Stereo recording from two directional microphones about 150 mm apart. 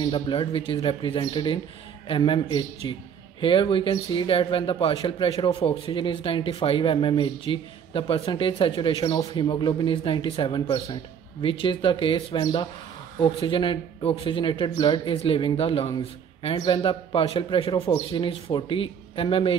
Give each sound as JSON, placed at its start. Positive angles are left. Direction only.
{"t": 0.1, "sound": "a man's voice", "side_deg": 35}
{"t": 16.5, "sound": "a man's voice", "side_deg": 30}